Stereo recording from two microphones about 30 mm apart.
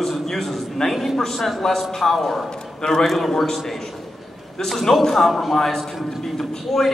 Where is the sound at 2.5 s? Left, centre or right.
Left.